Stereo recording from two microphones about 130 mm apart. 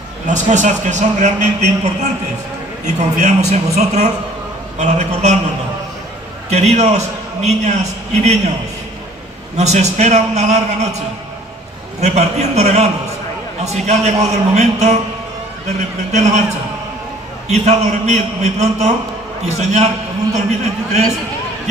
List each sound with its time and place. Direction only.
0.3 s a man's voice: 70° right (ahead or behind)
3.2 s a man's voice: 60° right (ahead or behind)
6.5 s a man's voice: 60° right (ahead or behind)
9.6 s a man's voice: 60° right (ahead or behind)
12.0 s a man's voice: 60° right (ahead or behind)
16.1 s a man's voice: 60° right (ahead or behind)